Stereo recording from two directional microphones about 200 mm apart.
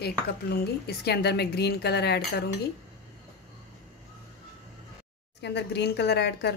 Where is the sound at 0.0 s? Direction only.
50° left (ahead or behind).